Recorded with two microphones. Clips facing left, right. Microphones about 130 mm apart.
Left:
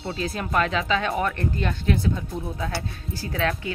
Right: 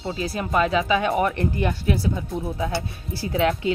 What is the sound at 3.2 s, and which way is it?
Speech, 20° right (ahead or behind).